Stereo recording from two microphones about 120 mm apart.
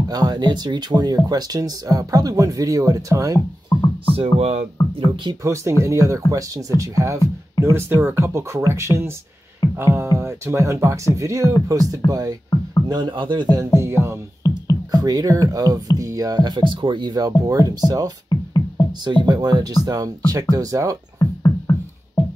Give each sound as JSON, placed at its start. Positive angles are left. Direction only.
{"t": 0.1, "sound": "speech", "side_deg": -35}
{"t": 3.7, "sound": "music", "side_deg": 30}
{"t": 4.1, "sound": "speech", "side_deg": -55}
{"t": 5.4, "sound": "speech", "side_deg": -25}
{"t": 13.7, "sound": "speech", "side_deg": -20}
{"t": 14.4, "sound": "music", "side_deg": 25}
{"t": 14.9, "sound": "speech", "side_deg": -30}
{"t": 18.3, "sound": "music", "side_deg": 35}
{"t": 19.0, "sound": "speech", "side_deg": -35}
{"t": 21.2, "sound": "music", "side_deg": 30}